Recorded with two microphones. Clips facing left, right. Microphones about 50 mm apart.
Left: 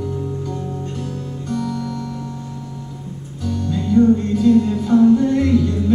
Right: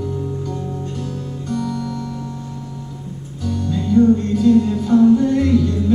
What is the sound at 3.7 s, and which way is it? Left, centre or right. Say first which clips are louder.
Music: even; centre.